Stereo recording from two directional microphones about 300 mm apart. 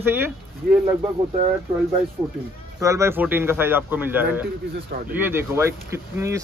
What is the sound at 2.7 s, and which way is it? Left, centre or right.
A man's voice, centre.